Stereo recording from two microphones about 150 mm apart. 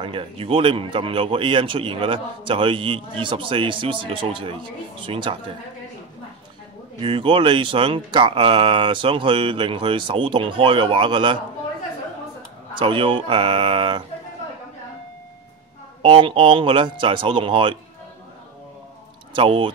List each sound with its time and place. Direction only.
0.0 s speech: 35° right (ahead or behind)
7.0 s speech: 35° right (ahead or behind)
12.7 s speech: 35° right (ahead or behind)
16.0 s speech: 35° right (ahead or behind)
19.3 s speech: 35° right (ahead or behind)